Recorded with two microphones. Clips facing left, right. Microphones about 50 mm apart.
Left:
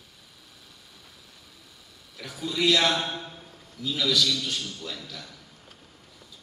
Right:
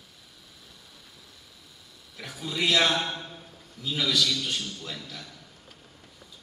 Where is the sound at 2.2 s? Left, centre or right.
Centre.